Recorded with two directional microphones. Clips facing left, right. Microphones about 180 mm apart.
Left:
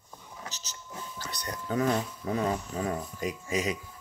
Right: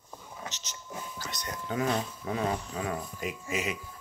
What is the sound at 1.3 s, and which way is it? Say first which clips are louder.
Speech: left 3 dB; 35° left (ahead or behind).